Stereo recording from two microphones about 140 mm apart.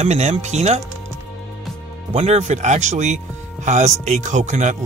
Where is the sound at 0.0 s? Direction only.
55° right (ahead or behind).